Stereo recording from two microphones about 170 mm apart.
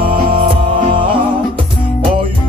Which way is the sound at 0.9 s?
30° right (ahead or behind).